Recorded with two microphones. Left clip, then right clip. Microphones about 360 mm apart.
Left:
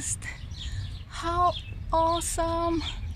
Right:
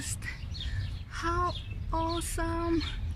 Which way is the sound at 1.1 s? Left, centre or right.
Centre.